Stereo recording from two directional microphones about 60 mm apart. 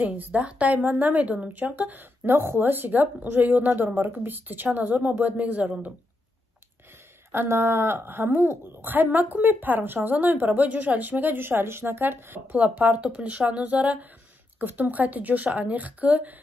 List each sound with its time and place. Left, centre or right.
0.0 s a woman's voice: right
7.4 s a woman's voice: right
12.5 s speech: right